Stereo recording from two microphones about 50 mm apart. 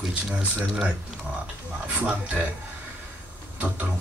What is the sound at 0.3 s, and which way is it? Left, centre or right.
Speech, centre.